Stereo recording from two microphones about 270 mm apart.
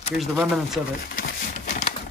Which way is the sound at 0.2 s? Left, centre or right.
Centre.